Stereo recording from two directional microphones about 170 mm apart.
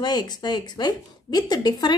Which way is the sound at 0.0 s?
25° left (ahead or behind).